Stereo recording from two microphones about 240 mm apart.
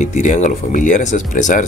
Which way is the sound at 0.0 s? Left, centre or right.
Left.